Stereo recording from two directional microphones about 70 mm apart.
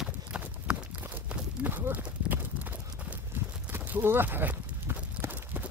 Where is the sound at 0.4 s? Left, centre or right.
Right.